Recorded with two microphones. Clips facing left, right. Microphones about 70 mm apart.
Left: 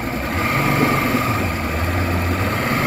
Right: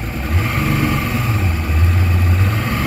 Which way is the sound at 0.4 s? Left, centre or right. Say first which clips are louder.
Left 1 dB; left.